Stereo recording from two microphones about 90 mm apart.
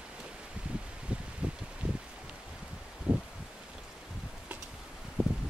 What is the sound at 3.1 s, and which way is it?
Rustling leaves, 10° right (ahead or behind).